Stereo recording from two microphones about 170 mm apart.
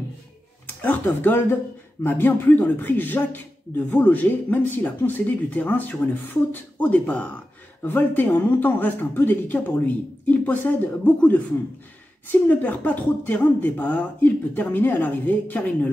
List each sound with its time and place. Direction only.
0.7 s speech: 10° left (ahead or behind)